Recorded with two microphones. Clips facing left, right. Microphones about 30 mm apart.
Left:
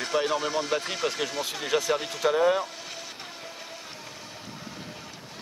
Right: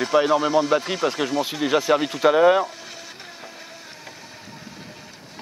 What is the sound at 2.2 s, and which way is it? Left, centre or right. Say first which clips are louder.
Speech: right 7 dB; right.